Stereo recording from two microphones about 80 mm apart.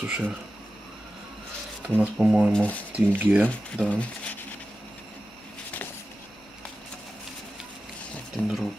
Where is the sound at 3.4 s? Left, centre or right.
Centre.